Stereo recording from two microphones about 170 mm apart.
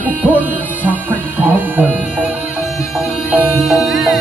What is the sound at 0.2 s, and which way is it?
Music, 10° right (ahead or behind).